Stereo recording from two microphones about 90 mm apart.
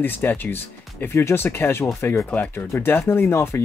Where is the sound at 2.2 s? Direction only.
20° left (ahead or behind).